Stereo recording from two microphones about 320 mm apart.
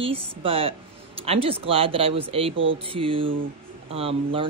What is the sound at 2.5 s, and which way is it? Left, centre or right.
Speech, right.